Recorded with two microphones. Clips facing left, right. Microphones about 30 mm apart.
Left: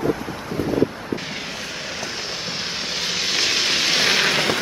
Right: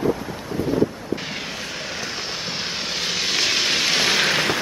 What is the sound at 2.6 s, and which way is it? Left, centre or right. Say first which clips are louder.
Vehicle: even; centre.